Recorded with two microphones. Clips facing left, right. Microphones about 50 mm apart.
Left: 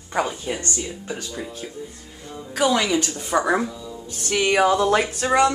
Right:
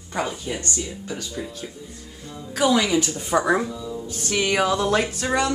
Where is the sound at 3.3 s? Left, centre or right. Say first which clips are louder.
Left 1 dB; centre.